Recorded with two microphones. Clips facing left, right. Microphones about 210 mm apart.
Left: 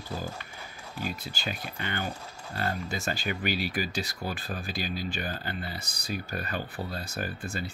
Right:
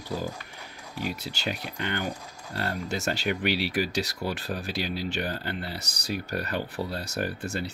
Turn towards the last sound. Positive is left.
turn(degrees=-70)  # may be behind; listen again after turning